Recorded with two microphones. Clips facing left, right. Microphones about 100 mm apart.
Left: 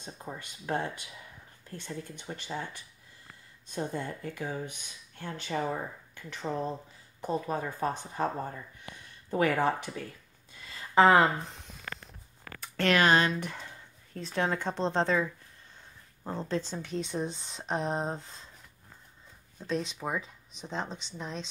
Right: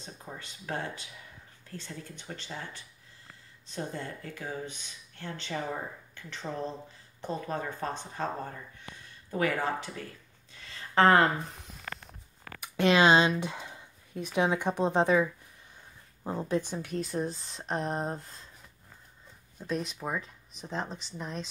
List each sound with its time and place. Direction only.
0.3 s speech: 15° left (ahead or behind)
10.7 s a sound: centre (ahead or behind)
12.5 s speech: 15° right (ahead or behind)
19.6 s speech: 5° right (ahead or behind)